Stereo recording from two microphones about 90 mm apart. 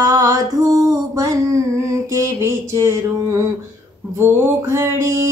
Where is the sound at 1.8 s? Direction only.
35° right (ahead or behind).